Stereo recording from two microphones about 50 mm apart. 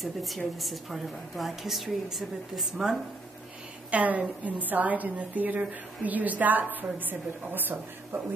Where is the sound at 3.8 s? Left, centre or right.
Right.